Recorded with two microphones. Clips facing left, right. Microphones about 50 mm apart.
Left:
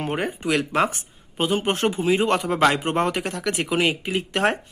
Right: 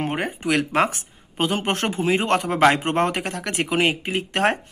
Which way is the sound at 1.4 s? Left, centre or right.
Right.